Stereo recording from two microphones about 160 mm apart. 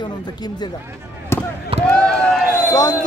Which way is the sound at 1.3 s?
15° left (ahead or behind).